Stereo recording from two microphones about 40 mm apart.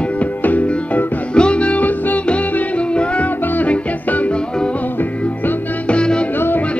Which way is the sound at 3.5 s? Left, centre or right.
Left.